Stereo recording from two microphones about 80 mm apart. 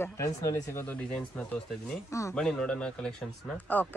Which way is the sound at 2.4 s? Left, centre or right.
Centre.